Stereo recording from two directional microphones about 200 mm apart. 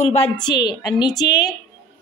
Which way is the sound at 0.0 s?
30° left (ahead or behind).